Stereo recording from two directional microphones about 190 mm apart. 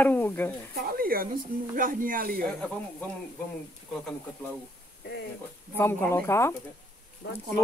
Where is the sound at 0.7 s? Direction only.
50° right (ahead or behind).